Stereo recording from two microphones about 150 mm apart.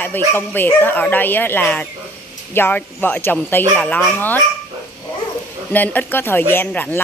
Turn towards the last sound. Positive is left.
turn(degrees=15)  # may be behind; listen again after turning